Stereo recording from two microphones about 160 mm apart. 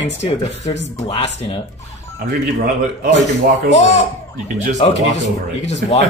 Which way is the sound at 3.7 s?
45° left (ahead or behind).